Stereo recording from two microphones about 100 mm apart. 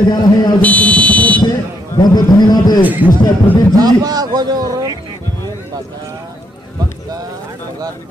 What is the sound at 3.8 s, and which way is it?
A man's voice, 40° right (ahead or behind).